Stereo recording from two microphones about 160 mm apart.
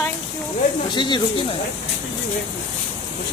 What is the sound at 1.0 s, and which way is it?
Speech, 30° left (ahead or behind).